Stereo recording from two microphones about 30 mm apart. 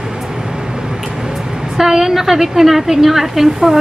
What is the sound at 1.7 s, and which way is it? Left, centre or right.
A woman's voice, centre.